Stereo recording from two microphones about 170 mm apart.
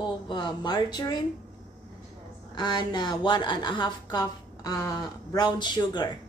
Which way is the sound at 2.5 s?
25° left (ahead or behind).